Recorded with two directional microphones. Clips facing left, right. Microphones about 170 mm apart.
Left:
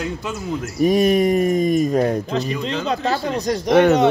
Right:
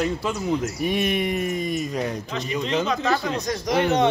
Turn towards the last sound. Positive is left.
turn(degrees=65)  # may be behind; listen again after turning